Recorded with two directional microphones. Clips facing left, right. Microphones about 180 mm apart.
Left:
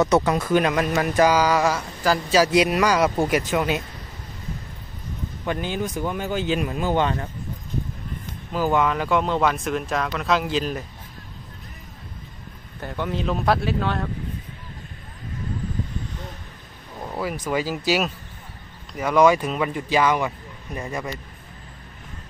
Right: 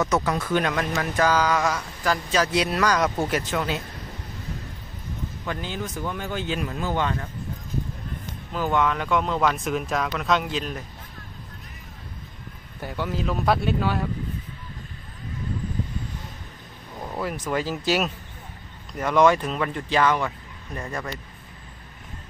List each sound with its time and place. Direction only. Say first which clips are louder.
0.0 s speech: left 5 dB; 25° left (ahead or behind)
5.4 s speech: left 6 dB; 15° left (ahead or behind)
8.5 s speech: left 2 dB; 5° left (ahead or behind)
12.8 s speech: left 2 dB; 5° right (ahead or behind)
17.0 s speech: left 2 dB; 5° left (ahead or behind)